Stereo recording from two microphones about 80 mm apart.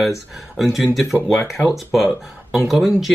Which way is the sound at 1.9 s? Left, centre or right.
Centre.